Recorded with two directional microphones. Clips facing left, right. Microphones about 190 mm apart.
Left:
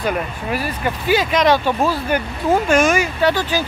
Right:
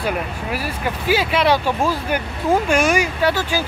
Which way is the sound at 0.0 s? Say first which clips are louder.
Left 1 dB; 10° right (ahead or behind).